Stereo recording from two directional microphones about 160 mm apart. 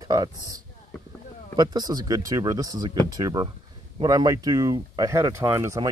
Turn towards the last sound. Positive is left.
turn(degrees=-20)  # may be behind; listen again after turning